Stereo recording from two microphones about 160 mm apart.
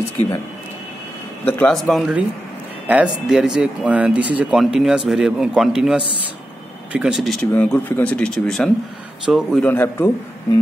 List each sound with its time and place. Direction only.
1.4 s speech: 10° left (ahead or behind)
7.5 s speech: 10° left (ahead or behind)